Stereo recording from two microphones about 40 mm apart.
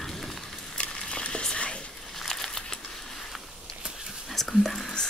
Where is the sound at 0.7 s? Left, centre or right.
Left.